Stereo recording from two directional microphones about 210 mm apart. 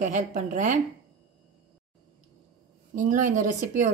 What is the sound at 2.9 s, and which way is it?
Speech, 40° right (ahead or behind).